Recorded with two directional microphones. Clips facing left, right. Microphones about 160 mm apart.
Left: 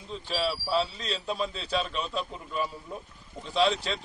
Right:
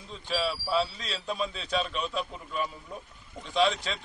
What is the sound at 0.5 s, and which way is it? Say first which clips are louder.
A man's voice: left 2 dB; centre (ahead or behind).